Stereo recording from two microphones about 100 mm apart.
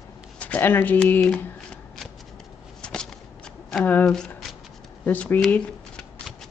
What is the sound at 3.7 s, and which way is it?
Speech, 20° left (ahead or behind).